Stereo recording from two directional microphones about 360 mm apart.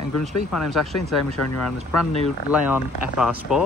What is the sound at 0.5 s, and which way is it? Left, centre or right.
Speech, centre.